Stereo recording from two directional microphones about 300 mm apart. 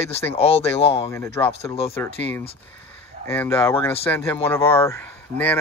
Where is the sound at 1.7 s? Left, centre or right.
Centre.